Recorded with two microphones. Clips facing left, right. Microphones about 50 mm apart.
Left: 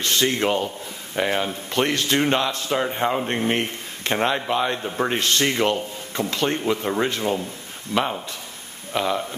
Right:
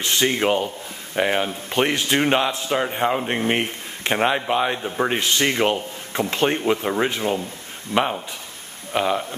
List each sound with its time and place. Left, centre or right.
0.0 s speech: centre
6.8 s speech: centre